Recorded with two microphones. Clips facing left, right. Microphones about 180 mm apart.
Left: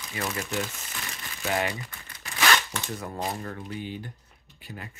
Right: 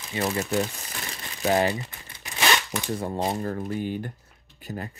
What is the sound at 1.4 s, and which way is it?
Speech, 30° right (ahead or behind).